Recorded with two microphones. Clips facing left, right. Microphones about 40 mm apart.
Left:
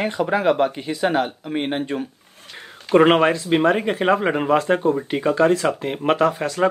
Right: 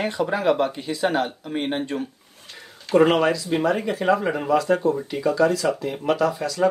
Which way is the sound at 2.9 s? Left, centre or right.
Left.